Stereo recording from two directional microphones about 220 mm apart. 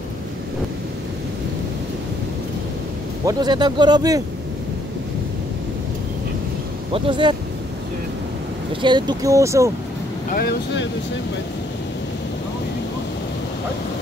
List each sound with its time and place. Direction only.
3.3 s speech: 20° right (ahead or behind)
6.9 s speech: 20° right (ahead or behind)
8.8 s speech: 20° right (ahead or behind)
10.3 s speech: 50° left (ahead or behind)